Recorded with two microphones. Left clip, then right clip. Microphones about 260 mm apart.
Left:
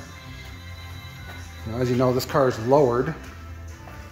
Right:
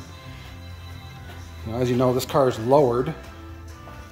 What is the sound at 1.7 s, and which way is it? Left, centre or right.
Speech, centre.